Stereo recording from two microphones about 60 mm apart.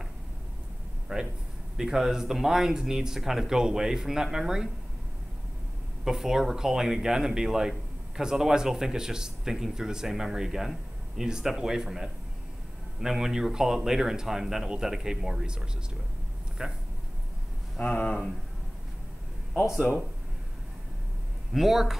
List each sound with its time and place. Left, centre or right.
1.1 s speech: centre
6.0 s speech: centre
17.7 s speech: left
21.5 s speech: centre